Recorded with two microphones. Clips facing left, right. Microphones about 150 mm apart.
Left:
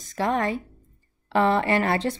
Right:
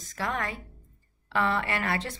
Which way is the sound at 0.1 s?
30° left (ahead or behind).